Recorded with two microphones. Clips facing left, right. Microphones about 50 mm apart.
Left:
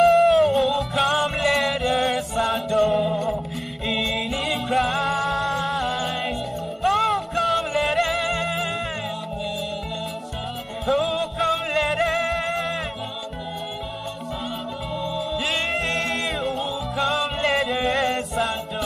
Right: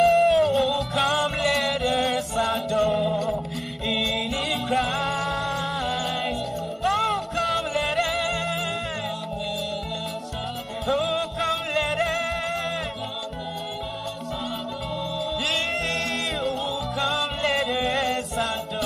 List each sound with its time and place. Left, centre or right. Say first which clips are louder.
0.0 s music: left 2 dB; centre
1.4 s music: left 2 dB; left
2.0 s music: left 1 dB; centre
10.9 s music: left 2 dB; centre
15.1 s music: left 1 dB; centre